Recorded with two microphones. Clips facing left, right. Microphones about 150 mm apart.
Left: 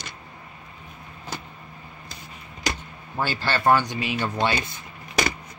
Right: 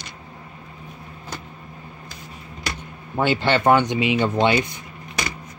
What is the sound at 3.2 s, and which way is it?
Speech, 20° right (ahead or behind).